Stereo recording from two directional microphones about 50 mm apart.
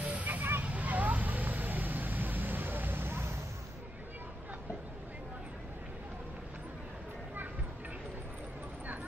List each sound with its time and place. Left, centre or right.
0.0 s vehicle: right
0.3 s vehicle: right